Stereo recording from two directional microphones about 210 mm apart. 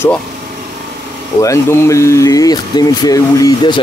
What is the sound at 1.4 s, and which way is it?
Speech, 15° left (ahead or behind).